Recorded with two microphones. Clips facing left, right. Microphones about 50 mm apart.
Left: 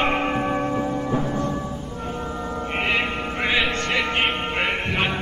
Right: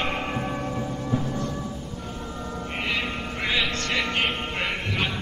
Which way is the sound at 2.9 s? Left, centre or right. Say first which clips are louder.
Left 4 dB; left.